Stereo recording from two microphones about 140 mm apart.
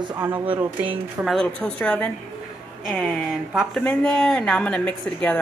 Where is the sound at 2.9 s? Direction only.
5° right (ahead or behind).